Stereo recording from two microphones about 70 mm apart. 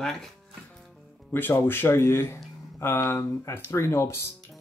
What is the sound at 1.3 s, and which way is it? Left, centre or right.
Speech, left.